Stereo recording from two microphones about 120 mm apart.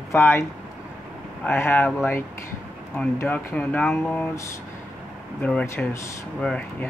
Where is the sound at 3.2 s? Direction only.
10° left (ahead or behind).